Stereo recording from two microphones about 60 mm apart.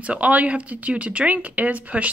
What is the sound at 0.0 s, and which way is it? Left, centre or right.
Speech, right.